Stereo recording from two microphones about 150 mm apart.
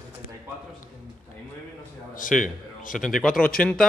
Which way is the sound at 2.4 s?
65° left (ahead or behind).